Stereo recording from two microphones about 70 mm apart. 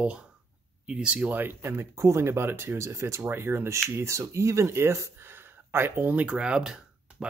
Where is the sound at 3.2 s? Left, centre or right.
Right.